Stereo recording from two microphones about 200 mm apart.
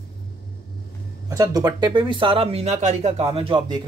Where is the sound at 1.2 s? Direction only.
15° right (ahead or behind).